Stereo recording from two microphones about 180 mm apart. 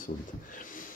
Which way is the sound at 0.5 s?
50° left (ahead or behind).